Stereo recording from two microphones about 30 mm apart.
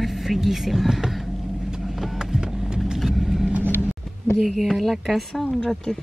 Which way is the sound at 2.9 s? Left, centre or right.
Centre.